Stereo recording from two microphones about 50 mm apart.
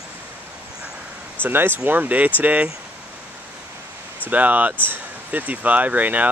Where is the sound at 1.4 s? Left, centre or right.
Right.